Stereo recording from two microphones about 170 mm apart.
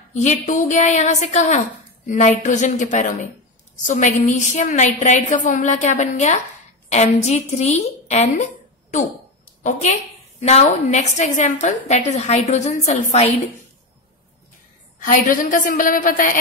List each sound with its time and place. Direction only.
0.1 s a woman's voice: 45° left (ahead or behind)
9.6 s a woman's voice: 45° left (ahead or behind)
15.0 s a woman's voice: 50° left (ahead or behind)